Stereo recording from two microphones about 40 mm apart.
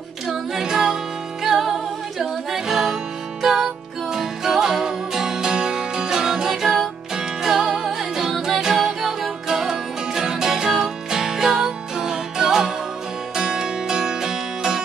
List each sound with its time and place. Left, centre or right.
0.3 s music: centre